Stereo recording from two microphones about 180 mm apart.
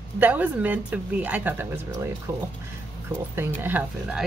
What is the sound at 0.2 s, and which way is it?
Speech, 10° right (ahead or behind).